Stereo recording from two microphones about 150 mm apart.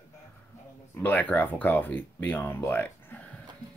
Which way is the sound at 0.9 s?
10° left (ahead or behind).